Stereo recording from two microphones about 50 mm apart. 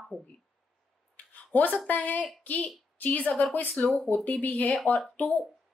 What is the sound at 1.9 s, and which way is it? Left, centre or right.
A woman's voice, left.